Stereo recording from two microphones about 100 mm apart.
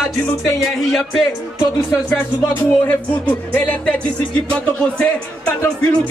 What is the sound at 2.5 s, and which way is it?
Music, 15° left (ahead or behind).